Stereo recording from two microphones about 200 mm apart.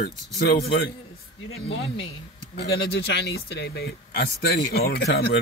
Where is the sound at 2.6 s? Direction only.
55° left (ahead or behind).